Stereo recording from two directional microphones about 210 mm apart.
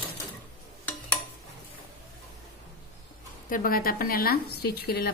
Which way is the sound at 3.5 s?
45° left (ahead or behind).